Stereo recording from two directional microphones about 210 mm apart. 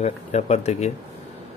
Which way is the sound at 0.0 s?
30° left (ahead or behind).